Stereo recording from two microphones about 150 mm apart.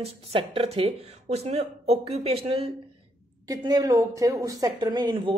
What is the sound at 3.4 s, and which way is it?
Speech, 25° right (ahead or behind).